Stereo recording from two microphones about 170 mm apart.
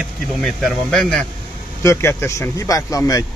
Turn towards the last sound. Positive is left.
turn(degrees=20)  # may be behind; listen again after turning